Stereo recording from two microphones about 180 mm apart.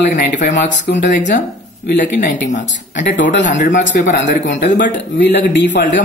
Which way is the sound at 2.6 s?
80° left.